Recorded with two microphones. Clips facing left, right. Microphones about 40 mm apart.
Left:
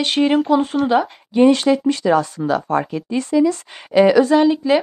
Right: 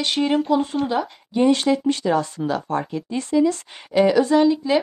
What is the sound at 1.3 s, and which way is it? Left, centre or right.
Speech, left.